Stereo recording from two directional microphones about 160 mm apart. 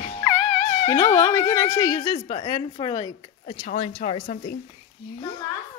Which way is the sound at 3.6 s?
45° left (ahead or behind).